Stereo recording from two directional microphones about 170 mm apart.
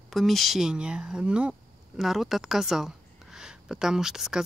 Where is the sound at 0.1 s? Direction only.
Centre (ahead or behind).